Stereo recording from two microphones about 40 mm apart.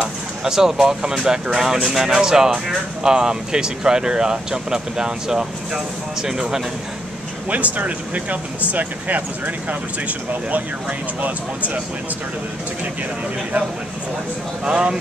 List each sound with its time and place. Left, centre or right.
0.4 s speech: centre
7.4 s speech: right
14.6 s speech: right